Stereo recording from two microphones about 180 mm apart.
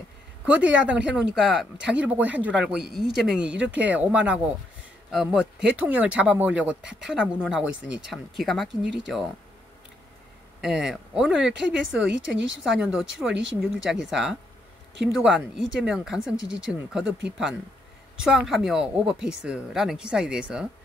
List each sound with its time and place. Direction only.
0.5 s speech: 5° right (ahead or behind)
10.6 s speech: 5° right (ahead or behind)